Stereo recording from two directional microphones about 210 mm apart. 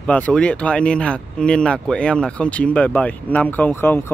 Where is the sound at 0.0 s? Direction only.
5° left (ahead or behind).